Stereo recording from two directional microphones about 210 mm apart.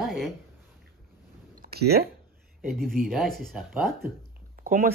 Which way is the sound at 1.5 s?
50° right (ahead or behind).